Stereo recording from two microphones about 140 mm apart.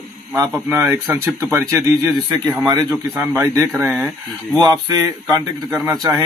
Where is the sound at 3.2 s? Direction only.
15° right (ahead or behind).